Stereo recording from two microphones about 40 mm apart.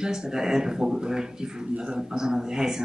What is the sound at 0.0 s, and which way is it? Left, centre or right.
Speech, centre.